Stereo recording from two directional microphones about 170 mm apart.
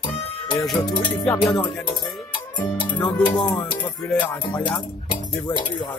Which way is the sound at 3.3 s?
25° left (ahead or behind).